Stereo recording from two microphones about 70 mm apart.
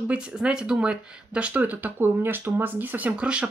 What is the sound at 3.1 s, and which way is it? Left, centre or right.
Speech, centre.